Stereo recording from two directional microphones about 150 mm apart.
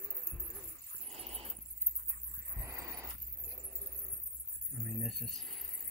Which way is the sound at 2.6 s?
20° right (ahead or behind).